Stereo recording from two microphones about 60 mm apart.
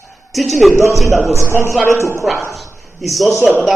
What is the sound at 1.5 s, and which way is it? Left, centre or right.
Speech, right.